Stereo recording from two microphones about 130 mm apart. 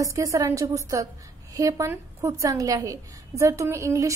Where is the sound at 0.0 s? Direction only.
25° right (ahead or behind).